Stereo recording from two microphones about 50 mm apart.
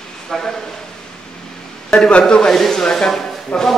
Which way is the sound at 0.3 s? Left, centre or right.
Centre.